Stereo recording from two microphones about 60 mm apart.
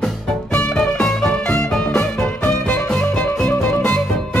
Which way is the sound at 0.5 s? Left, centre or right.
Centre.